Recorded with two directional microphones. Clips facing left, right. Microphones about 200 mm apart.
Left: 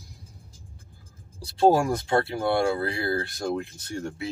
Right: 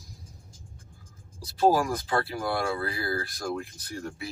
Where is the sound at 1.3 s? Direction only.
30° left (ahead or behind).